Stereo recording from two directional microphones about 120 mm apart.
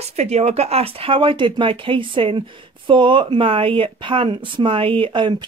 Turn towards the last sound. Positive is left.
turn(degrees=-45)  # may be behind; listen again after turning